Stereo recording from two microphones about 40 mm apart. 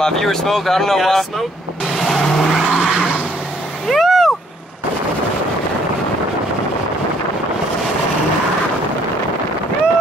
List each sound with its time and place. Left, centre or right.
0.0 s speech: centre
2.0 s vehicle: centre
2.7 s vehicle: right
3.9 s vehicle: centre